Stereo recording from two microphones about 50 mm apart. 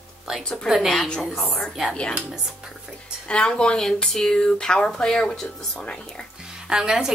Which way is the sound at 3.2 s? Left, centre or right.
Centre.